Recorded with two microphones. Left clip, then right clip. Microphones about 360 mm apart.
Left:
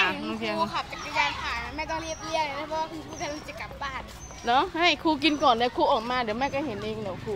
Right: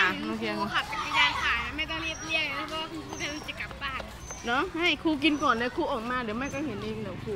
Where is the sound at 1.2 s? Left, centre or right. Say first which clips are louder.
Right 2 dB; centre.